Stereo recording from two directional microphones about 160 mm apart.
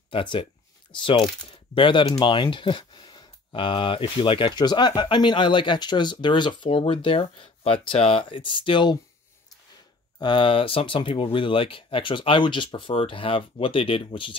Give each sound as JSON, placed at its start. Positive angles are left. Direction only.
{"t": 0.1, "sound": "speech", "side_deg": 30}
{"t": 10.1, "sound": "speech", "side_deg": 30}